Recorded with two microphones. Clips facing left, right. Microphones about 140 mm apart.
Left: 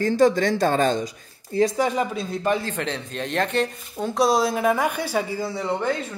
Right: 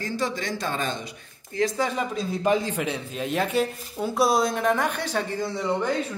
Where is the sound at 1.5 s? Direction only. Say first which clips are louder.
Left 5 dB; 35° left (ahead or behind).